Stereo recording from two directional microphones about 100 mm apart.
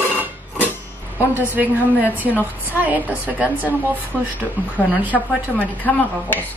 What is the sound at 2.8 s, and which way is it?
A woman's voice, 15° right (ahead or behind).